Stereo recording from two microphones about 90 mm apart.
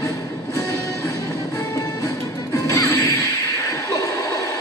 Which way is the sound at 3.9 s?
40° left (ahead or behind).